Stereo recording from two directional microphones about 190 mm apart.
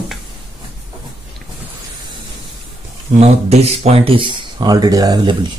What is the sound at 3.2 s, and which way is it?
Speech, 35° right (ahead or behind).